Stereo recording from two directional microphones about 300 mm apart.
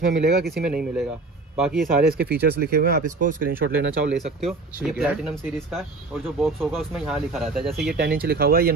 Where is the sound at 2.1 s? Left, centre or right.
Right.